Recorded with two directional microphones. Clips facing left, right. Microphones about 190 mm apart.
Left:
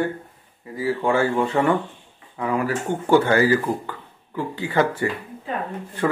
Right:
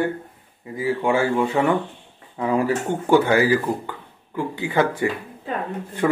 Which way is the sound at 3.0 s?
10° right (ahead or behind).